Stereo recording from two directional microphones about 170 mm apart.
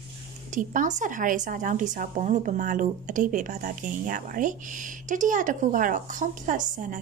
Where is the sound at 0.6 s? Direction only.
45° right (ahead or behind).